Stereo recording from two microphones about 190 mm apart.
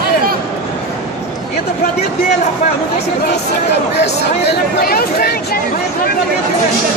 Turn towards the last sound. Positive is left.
turn(degrees=55)  # may be behind; listen again after turning